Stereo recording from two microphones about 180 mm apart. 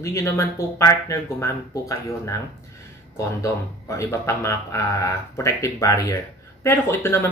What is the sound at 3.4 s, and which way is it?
Speech, 15° left (ahead or behind).